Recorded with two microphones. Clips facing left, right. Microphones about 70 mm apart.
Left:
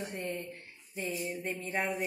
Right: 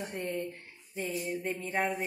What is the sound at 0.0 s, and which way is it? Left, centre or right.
A woman's voice, right.